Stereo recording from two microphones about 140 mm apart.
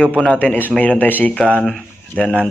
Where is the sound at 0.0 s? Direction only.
5° left (ahead or behind).